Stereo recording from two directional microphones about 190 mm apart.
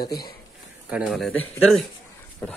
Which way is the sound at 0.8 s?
Centre (ahead or behind).